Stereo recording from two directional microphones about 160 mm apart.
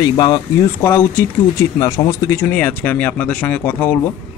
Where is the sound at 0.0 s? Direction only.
25° left (ahead or behind).